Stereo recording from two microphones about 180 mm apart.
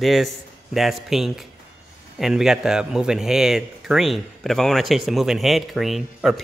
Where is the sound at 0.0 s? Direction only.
Centre (ahead or behind).